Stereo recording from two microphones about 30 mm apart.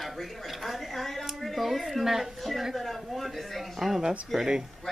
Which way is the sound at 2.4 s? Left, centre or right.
Centre.